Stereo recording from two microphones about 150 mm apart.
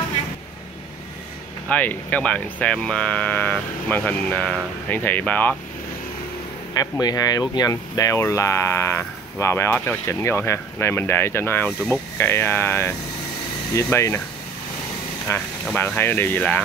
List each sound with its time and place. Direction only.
1.7 s speech: 10° left (ahead or behind)
6.7 s speech: 25° left (ahead or behind)
15.3 s speech: 15° left (ahead or behind)